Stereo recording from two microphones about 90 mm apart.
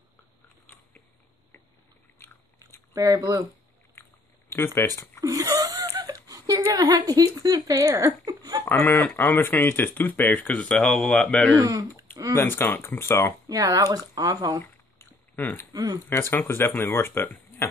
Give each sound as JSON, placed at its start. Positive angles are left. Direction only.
{"t": 2.1, "sound": "biting", "side_deg": 30}
{"t": 2.9, "sound": "speech", "side_deg": -40}
{"t": 4.7, "sound": "speech", "side_deg": 30}
{"t": 5.2, "sound": "a sound", "side_deg": -40}
{"t": 8.6, "sound": "speech", "side_deg": 25}
{"t": 11.5, "sound": "speech", "side_deg": -45}
{"t": 12.4, "sound": "speech", "side_deg": 25}
{"t": 13.5, "sound": "speech", "side_deg": -40}
{"t": 14.6, "sound": "a sound", "side_deg": 25}
{"t": 15.7, "sound": "speech", "side_deg": -45}
{"t": 16.1, "sound": "speech", "side_deg": 25}